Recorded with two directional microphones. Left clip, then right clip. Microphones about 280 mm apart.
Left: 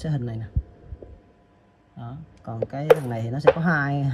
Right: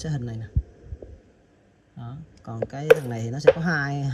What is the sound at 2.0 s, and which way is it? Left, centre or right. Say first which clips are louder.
Speech: left 3 dB; right.